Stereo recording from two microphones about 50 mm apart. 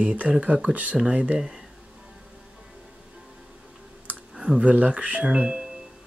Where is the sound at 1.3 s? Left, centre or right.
Centre.